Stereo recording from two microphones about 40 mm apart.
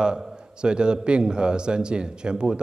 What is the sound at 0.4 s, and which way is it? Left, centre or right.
A man's voice, right.